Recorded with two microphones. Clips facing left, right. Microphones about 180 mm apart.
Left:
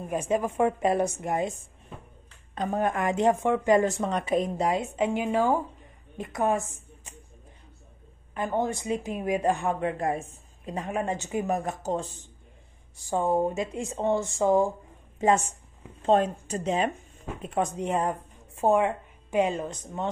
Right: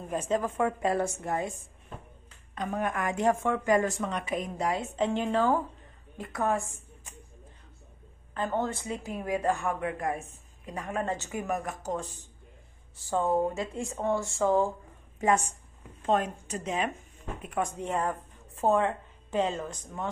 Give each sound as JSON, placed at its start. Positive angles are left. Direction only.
{"t": 0.0, "sound": "speech", "side_deg": 10}
{"t": 2.5, "sound": "a woman's voice", "side_deg": 30}
{"t": 4.9, "sound": "a woman's voice", "side_deg": 10}
{"t": 8.4, "sound": "a woman's voice", "side_deg": 15}
{"t": 12.9, "sound": "a woman's voice", "side_deg": 15}